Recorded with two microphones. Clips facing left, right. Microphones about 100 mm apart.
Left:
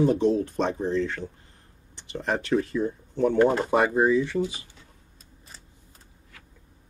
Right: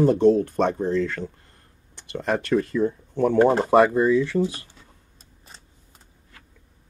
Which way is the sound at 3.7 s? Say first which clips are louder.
Right 4 dB; 65° right (ahead or behind).